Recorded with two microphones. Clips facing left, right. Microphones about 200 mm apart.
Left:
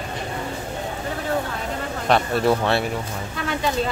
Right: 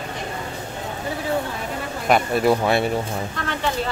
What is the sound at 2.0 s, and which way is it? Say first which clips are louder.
Speech: right 1 dB; 10° right (ahead or behind).